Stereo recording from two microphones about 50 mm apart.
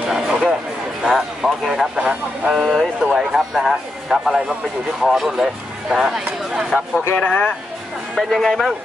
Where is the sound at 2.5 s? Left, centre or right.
Centre.